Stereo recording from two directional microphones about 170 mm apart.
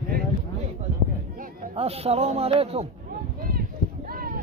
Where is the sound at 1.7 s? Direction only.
35° right (ahead or behind).